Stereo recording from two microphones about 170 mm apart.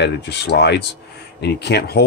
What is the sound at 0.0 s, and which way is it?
Speech, 90° left.